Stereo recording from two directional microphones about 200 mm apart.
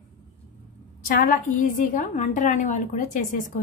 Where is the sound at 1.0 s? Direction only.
45° left (ahead or behind).